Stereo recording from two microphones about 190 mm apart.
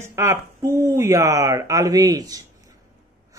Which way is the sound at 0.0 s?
15° right (ahead or behind).